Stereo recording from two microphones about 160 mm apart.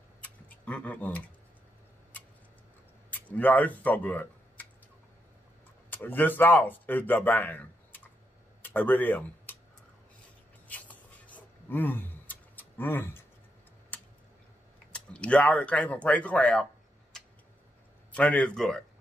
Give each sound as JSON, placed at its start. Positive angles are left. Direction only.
{"t": 0.2, "sound": "a sound", "side_deg": 10}
{"t": 3.1, "sound": "speech", "side_deg": 10}
{"t": 5.9, "sound": "speech", "side_deg": 10}
{"t": 10.7, "sound": "a sound", "side_deg": 10}
{"t": 13.9, "sound": "tick", "side_deg": 10}
{"t": 14.9, "sound": "speech", "side_deg": 5}
{"t": 18.1, "sound": "speech", "side_deg": 10}